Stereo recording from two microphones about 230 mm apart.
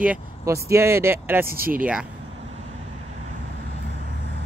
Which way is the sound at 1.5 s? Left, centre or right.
Right.